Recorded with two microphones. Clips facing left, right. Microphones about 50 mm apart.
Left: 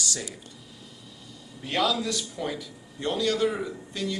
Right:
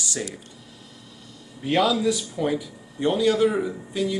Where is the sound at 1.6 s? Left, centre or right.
Centre.